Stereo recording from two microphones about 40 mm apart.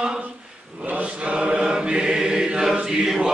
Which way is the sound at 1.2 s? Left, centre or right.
Right.